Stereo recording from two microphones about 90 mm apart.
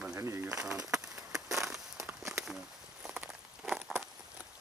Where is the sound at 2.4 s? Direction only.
5° right (ahead or behind).